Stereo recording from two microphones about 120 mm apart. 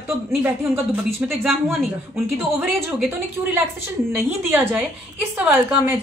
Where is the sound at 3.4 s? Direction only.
20° right (ahead or behind).